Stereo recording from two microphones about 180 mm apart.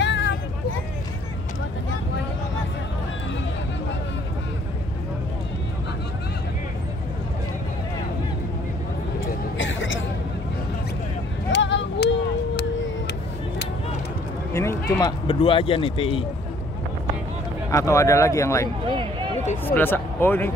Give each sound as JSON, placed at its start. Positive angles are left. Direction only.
{"t": 0.0, "sound": "vehicle", "side_deg": 75}
{"t": 9.6, "sound": "a sound", "side_deg": 90}
{"t": 11.5, "sound": "vehicle", "side_deg": 90}
{"t": 14.5, "sound": "speech", "side_deg": 15}
{"t": 17.6, "sound": "speech", "side_deg": 15}